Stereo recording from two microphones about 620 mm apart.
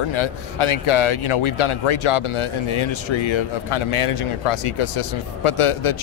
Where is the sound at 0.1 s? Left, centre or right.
Left.